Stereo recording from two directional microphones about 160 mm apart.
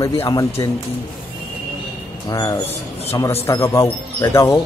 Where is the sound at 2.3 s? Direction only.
20° left (ahead or behind).